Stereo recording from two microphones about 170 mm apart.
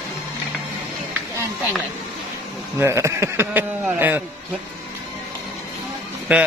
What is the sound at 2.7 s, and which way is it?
Speech, 15° right (ahead or behind).